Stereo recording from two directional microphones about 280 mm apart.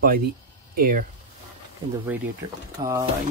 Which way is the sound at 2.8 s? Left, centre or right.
Centre.